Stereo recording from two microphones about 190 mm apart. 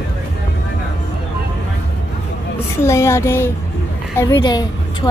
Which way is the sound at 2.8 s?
15° left (ahead or behind).